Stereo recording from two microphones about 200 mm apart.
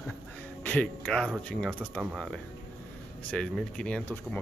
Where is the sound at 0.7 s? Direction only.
5° left (ahead or behind).